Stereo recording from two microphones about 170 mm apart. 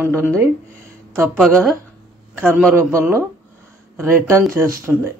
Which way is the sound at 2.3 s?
10° right (ahead or behind).